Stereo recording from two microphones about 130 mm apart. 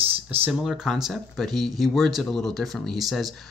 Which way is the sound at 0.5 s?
5° right (ahead or behind).